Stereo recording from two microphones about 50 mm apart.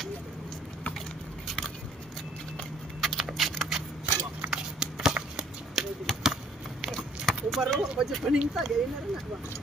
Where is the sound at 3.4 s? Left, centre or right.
Centre.